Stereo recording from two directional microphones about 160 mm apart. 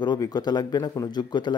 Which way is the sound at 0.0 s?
25° left (ahead or behind).